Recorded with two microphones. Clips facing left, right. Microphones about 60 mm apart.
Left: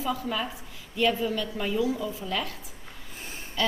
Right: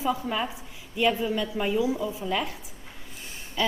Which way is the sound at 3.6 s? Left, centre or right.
Centre.